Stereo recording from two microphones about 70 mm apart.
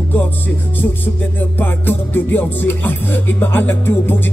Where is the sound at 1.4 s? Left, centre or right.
Left.